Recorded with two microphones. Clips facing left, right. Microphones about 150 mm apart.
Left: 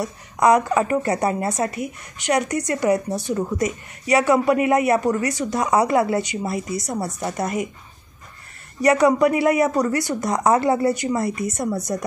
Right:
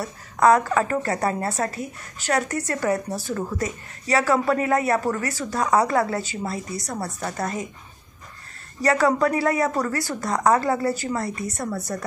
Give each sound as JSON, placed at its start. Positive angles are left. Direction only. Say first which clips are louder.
{"t": 0.0, "sound": "a woman's voice", "louder": "even", "side_deg": 20}
{"t": 8.8, "sound": "speech", "louder": "left 4 dB", "side_deg": 20}